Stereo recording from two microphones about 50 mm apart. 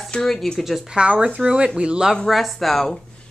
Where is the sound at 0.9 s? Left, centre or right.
Right.